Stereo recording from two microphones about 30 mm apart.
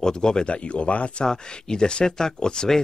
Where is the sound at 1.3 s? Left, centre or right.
Left.